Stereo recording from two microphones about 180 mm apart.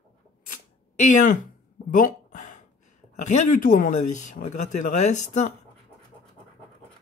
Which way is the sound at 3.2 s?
45° left (ahead or behind).